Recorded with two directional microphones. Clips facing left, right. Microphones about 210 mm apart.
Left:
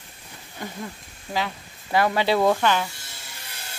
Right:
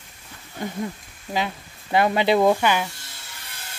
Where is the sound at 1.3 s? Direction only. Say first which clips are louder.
Right 2 dB; 20° right (ahead or behind).